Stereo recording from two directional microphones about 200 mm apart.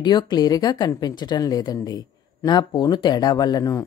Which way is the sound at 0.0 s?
20° left (ahead or behind).